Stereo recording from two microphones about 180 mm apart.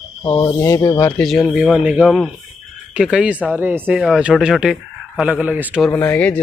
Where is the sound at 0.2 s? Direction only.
20° left (ahead or behind).